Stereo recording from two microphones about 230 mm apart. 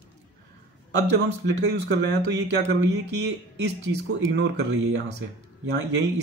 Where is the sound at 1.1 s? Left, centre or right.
Right.